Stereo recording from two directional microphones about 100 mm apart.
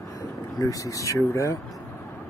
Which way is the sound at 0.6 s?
35° left (ahead or behind).